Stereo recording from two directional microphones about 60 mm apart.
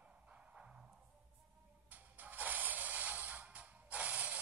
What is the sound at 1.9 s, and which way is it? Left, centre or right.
Music, right.